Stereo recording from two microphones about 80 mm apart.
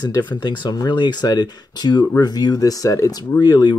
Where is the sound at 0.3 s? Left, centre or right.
Left.